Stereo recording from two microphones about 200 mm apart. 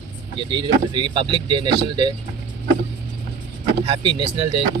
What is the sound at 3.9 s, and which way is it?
Speech, 25° right (ahead or behind).